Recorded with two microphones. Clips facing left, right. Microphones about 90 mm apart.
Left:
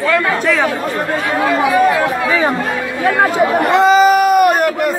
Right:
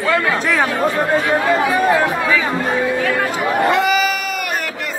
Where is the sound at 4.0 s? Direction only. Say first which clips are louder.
Left 12 dB; 45° left (ahead or behind).